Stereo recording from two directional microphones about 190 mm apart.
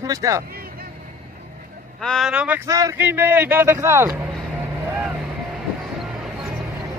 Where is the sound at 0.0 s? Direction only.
20° right (ahead or behind).